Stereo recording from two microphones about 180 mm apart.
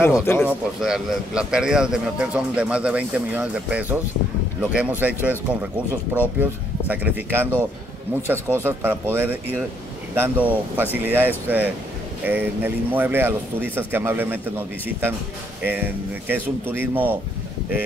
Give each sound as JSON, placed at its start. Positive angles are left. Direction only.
{"t": 0.0, "sound": "speech", "side_deg": 15}
{"t": 0.5, "sound": "a man's voice", "side_deg": -5}
{"t": 15.6, "sound": "speech", "side_deg": -10}